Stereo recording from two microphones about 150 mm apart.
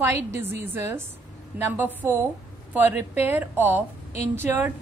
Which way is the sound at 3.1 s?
15° right (ahead or behind).